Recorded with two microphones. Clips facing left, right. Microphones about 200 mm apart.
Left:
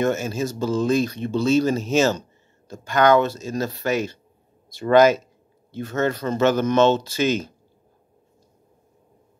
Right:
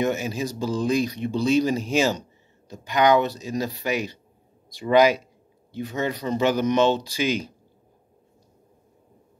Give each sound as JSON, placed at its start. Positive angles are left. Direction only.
{"t": 0.0, "sound": "speech", "side_deg": -15}